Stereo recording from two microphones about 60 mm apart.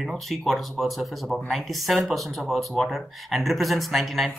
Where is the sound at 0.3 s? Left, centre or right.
Centre.